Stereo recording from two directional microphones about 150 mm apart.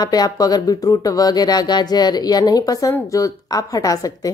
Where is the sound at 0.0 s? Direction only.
25° left (ahead or behind).